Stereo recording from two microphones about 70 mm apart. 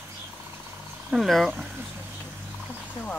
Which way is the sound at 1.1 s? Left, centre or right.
Centre.